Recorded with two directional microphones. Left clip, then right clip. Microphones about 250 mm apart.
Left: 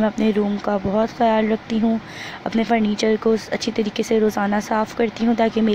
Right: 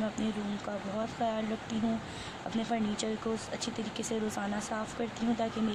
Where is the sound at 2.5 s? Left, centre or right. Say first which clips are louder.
Left 14 dB; left.